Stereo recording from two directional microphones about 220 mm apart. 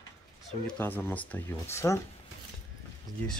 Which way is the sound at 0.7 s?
10° left (ahead or behind).